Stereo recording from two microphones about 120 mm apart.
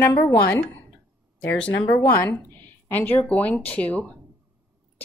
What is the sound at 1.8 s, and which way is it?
Speech, 25° left (ahead or behind).